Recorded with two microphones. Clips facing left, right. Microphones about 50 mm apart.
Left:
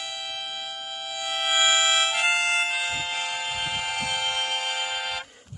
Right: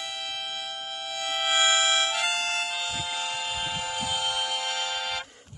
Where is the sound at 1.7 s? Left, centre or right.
Left.